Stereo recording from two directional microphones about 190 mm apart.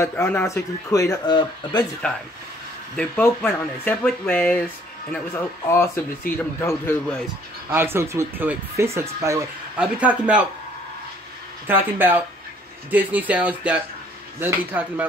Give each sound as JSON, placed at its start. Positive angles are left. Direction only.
{"t": 0.0, "sound": "speech", "side_deg": 10}
{"t": 3.8, "sound": "speech", "side_deg": 10}
{"t": 7.7, "sound": "speech", "side_deg": -10}
{"t": 11.6, "sound": "speech", "side_deg": -10}